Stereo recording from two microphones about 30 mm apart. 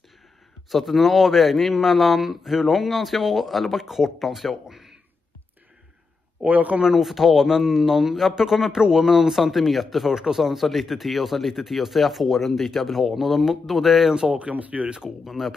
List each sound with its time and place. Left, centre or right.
0.7 s a man's voice: centre
4.6 s a sound: centre
6.4 s a man's voice: right
6.8 s speech: centre
10.1 s a man's voice: centre
14.5 s speech: right
15.0 s a man's voice: centre